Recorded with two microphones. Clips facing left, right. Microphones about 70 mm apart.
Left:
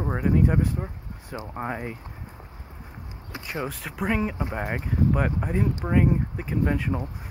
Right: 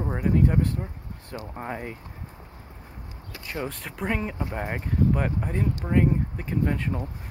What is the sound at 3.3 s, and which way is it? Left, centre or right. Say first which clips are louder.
Speech: left 1 dB; centre.